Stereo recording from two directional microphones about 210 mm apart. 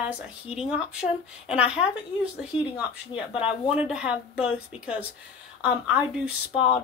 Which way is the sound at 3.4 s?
5° right (ahead or behind).